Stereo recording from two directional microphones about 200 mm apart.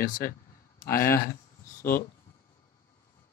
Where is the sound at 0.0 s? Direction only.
45° left (ahead or behind).